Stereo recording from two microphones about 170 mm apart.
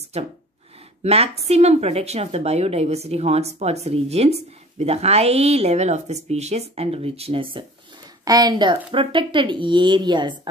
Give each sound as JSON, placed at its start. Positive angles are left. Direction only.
{"t": 0.1, "sound": "a woman's voice", "side_deg": -40}